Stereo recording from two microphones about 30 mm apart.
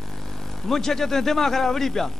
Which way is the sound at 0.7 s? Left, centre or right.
Centre.